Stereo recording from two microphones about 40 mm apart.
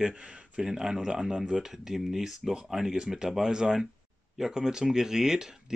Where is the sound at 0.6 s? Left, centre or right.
Centre.